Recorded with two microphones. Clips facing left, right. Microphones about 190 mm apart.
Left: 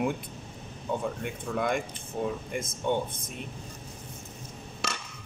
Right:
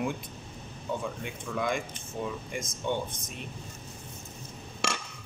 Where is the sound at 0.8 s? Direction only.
55° left (ahead or behind).